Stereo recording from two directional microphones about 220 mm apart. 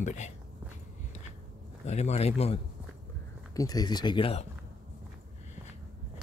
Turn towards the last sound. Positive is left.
turn(degrees=25)  # may be behind; listen again after turning